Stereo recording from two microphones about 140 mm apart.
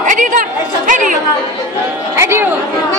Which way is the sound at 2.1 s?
20° right (ahead or behind).